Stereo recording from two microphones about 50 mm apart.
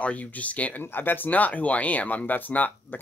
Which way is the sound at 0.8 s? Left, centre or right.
Left.